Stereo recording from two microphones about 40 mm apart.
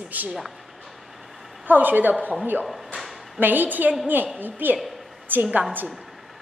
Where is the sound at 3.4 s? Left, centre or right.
Right.